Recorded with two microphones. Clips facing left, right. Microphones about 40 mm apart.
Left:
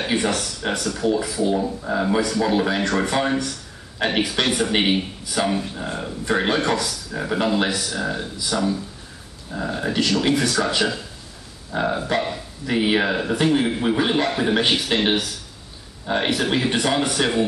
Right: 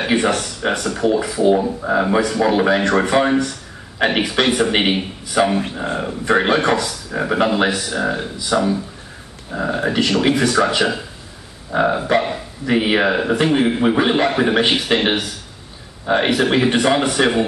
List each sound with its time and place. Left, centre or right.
0.0 s speech: right